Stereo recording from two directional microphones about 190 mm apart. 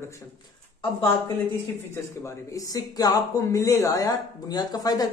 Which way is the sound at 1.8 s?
15° left (ahead or behind).